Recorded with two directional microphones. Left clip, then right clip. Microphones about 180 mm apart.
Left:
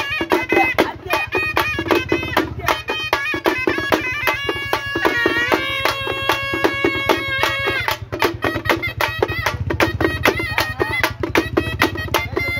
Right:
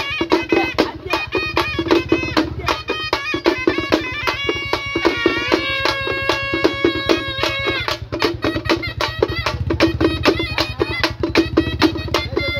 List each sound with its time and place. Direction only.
0.3 s music: 15° left (ahead or behind)